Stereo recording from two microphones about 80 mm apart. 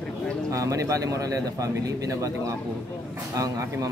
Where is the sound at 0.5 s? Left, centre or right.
Right.